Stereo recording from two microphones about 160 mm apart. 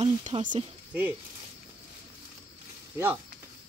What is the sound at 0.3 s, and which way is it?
Speech, 35° right (ahead or behind).